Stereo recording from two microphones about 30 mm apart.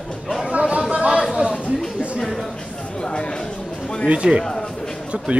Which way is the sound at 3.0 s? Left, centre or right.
Left.